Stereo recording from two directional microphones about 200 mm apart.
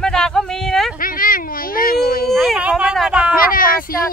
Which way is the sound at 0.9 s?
45° left (ahead or behind).